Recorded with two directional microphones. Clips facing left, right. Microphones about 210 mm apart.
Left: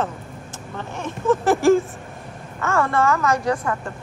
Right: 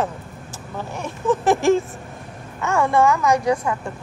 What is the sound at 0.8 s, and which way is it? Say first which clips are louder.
Speech: even; 15° right (ahead or behind).